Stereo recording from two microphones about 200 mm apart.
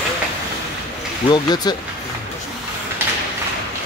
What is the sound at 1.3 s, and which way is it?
Speech, 20° left (ahead or behind).